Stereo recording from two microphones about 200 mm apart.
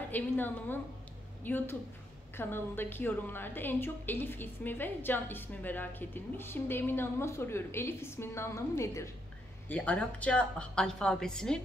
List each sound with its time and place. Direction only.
0.1 s a woman's voice: 10° left (ahead or behind)